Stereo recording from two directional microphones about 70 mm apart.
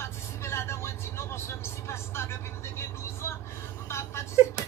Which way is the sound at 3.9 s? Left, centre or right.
Left.